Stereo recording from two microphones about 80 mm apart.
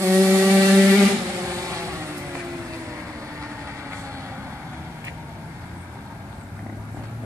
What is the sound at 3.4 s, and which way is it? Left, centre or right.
Vehicle, right.